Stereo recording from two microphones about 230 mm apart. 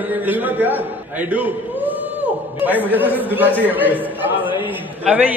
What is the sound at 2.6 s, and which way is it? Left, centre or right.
A man's voice, centre.